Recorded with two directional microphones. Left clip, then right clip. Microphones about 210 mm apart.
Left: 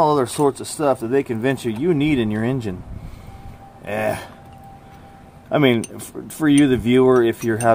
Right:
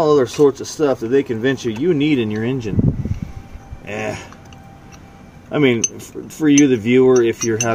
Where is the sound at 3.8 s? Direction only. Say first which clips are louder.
Left 3 dB; 15° left (ahead or behind).